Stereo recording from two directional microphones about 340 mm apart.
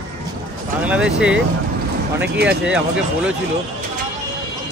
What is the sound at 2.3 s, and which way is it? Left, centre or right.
Speech, right.